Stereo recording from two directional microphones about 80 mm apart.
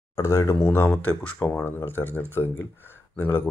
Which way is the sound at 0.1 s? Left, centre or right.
Left.